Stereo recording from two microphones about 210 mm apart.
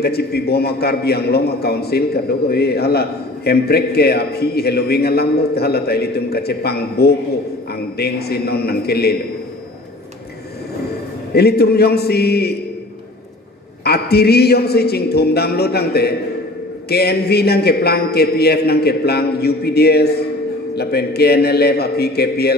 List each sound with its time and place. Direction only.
0.0 s a man's voice: 50° left (ahead or behind)
11.3 s a man's voice: 50° left (ahead or behind)
13.8 s a man's voice: 50° left (ahead or behind)